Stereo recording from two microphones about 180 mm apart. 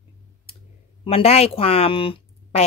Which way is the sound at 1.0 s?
35° left (ahead or behind).